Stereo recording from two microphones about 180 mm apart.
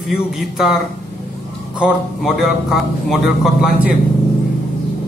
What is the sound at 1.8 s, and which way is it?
A man's voice, centre (ahead or behind).